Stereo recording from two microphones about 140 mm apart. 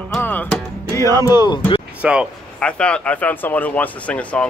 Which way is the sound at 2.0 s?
5° right (ahead or behind).